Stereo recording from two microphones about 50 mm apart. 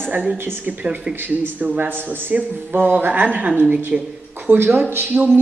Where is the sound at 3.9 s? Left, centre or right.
Centre.